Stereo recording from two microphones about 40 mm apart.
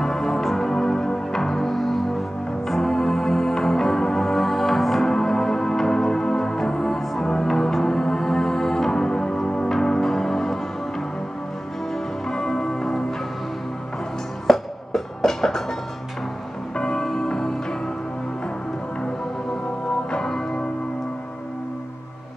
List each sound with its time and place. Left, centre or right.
0.0 s music: centre
11.9 s church bell: centre
14.5 s music: centre
16.7 s music: centre
20.1 s music: centre